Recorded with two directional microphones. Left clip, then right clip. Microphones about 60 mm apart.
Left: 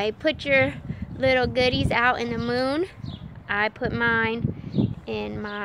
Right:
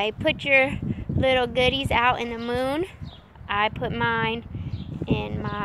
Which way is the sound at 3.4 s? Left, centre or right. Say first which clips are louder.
Even; left.